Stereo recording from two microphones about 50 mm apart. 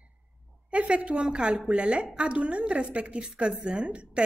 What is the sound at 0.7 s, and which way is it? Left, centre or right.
Speech, right.